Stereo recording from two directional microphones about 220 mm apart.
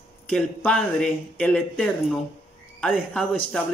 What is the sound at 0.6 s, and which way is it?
Speech, 5° left (ahead or behind).